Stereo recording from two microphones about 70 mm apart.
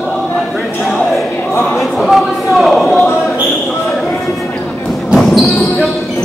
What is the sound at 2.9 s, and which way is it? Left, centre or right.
Basketball bounce, left.